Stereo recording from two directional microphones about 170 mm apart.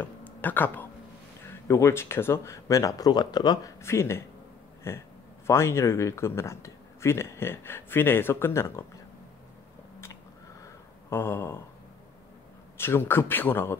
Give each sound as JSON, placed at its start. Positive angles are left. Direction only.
{"t": 0.0, "sound": "speech", "side_deg": 10}
{"t": 10.6, "sound": "a sound", "side_deg": 15}
{"t": 12.7, "sound": "speech", "side_deg": 15}